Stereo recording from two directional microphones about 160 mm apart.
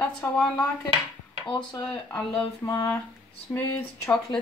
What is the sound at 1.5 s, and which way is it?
Speech, 25° left (ahead or behind).